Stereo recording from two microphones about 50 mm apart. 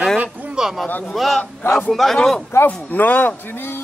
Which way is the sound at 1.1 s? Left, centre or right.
Centre.